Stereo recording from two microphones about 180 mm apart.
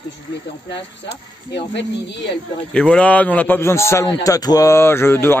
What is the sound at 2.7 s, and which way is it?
A man's voice, 5° left (ahead or behind).